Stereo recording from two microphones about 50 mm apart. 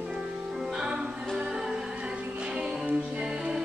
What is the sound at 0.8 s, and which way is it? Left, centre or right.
Music, centre.